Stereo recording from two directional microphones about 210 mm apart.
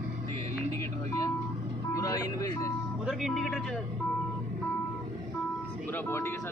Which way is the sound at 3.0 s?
Centre (ahead or behind).